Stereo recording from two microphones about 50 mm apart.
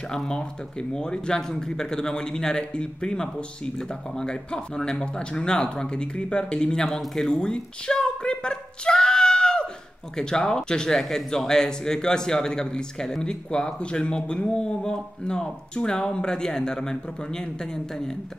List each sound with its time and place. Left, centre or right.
0.1 s speech: centre
7.0 s a sound: centre
10.1 s speech: centre